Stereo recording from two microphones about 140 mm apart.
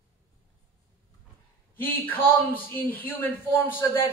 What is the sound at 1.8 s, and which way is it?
A man's voice, 15° left (ahead or behind).